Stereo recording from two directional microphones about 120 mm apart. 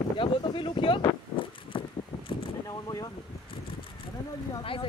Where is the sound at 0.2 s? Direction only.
45° left (ahead or behind).